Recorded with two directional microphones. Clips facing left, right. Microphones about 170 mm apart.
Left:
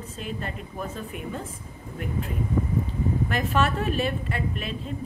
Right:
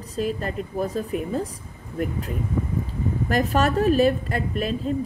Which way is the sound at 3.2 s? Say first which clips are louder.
Right 6 dB; 40° right (ahead or behind).